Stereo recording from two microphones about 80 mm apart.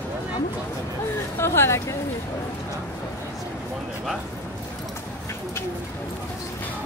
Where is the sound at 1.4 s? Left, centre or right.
Left.